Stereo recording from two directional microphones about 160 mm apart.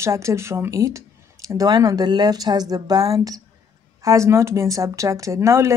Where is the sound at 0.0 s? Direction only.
20° right (ahead or behind).